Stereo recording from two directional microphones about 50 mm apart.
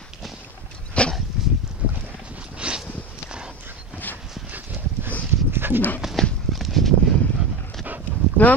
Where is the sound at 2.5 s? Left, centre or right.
Right.